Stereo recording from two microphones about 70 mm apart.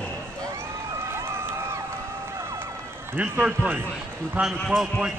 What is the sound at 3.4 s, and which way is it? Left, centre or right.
A man's voice, centre.